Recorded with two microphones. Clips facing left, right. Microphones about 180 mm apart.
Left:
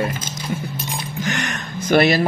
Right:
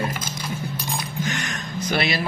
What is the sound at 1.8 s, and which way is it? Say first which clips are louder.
Speech: left 9 dB; 50° left (ahead or behind).